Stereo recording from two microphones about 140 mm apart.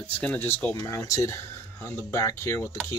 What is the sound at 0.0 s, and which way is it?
Speech, 10° left (ahead or behind).